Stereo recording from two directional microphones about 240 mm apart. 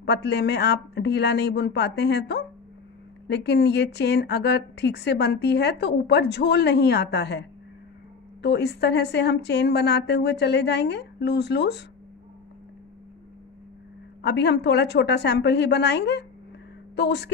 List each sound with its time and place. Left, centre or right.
0.0 s speech: left
14.2 s speech: left